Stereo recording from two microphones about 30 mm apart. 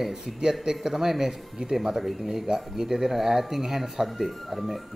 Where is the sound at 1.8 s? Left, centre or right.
Centre.